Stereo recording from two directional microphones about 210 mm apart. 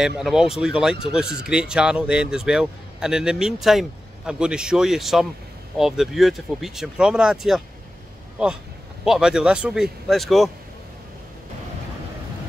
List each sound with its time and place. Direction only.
0.0 s a man's voice: centre (ahead or behind)
9.0 s a man's voice: 5° right (ahead or behind)